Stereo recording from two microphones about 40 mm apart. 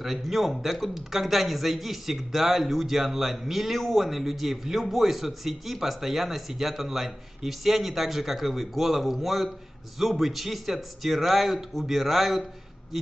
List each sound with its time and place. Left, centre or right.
0.0 s a man's voice: centre